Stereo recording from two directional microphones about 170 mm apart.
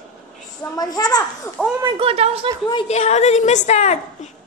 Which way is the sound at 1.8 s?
30° right (ahead or behind).